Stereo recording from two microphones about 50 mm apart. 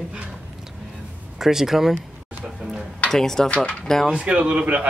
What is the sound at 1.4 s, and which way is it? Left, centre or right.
Speech, centre.